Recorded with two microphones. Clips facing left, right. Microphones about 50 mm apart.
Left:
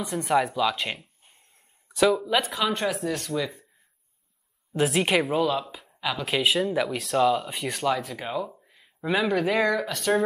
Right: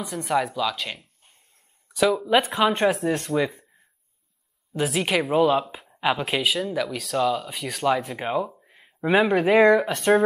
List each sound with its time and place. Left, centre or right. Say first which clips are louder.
0.0 s speech: left 1 dB; centre
1.9 s a sound: even; centre
2.1 s speech: right 4 dB; centre
2.5 s speech: right 5 dB; right
4.7 s speech: left 1 dB; centre
5.3 s speech: right 5 dB; centre
5.9 s a sound: right 6 dB; right
6.4 s speech: left 1 dB; centre
8.2 s speech: right 5 dB; right
9.0 s speech: right 5 dB; centre
10.1 s speech: right 5 dB; right